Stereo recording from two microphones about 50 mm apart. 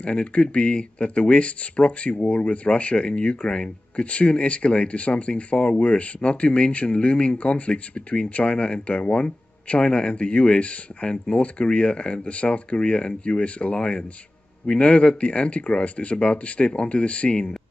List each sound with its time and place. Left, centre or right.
0.0 s speech: left